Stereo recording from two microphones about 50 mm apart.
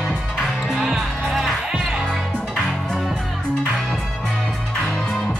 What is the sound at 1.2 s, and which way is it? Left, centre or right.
Music, centre.